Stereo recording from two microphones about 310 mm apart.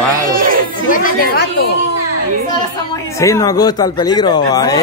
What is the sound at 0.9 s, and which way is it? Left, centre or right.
Speech, left.